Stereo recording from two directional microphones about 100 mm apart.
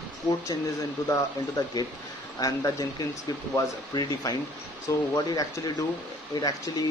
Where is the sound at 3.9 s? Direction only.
35° left (ahead or behind).